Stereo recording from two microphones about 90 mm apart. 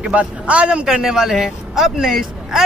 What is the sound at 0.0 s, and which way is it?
A man's voice, 15° right (ahead or behind).